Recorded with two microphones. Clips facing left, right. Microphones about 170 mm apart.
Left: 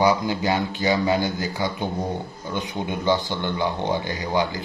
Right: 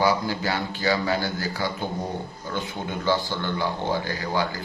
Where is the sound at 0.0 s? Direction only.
20° left (ahead or behind).